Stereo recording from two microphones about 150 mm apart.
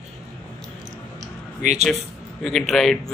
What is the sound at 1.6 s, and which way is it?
Speech, 50° right (ahead or behind).